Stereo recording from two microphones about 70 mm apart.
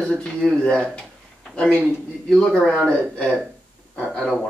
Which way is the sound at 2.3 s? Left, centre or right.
Centre.